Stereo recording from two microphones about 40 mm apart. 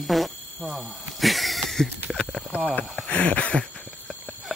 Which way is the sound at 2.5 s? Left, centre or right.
Left.